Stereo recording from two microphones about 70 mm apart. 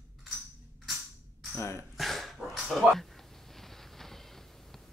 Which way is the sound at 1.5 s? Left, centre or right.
Left.